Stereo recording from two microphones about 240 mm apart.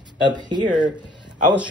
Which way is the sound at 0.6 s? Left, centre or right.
Right.